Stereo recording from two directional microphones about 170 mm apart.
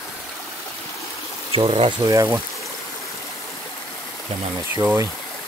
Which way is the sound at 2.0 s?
15° right (ahead or behind).